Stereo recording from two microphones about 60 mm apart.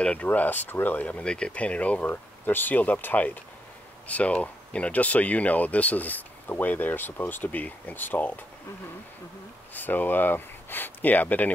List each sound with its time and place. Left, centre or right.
0.0 s speech: left
9.8 s speech: left